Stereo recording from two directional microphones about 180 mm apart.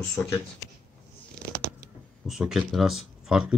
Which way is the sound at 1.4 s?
60° right (ahead or behind).